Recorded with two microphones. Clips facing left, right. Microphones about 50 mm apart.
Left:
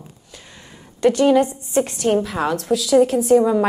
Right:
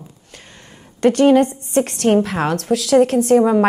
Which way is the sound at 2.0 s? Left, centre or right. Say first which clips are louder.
Right 4 dB; right.